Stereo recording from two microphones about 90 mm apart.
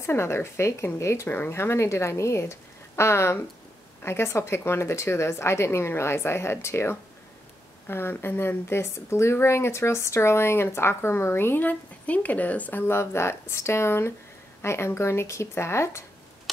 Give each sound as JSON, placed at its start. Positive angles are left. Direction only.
{"t": 0.0, "sound": "speech", "side_deg": 30}